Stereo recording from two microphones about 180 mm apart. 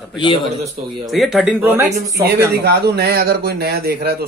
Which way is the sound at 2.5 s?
60° right (ahead or behind).